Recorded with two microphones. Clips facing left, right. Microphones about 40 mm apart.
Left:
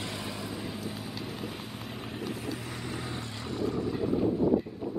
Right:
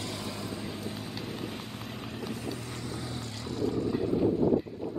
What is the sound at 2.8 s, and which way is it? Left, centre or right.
Vehicle, left.